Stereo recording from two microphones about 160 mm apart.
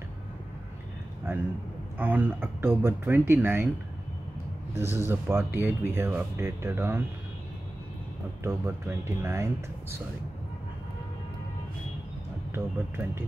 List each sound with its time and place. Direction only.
1.3 s speech: 15° right (ahead or behind)
4.7 s speech: 15° right (ahead or behind)
8.5 s speech: 15° right (ahead or behind)
12.5 s speech: 15° right (ahead or behind)